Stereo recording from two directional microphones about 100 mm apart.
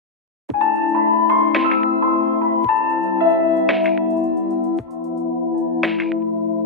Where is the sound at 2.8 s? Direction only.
35° right (ahead or behind).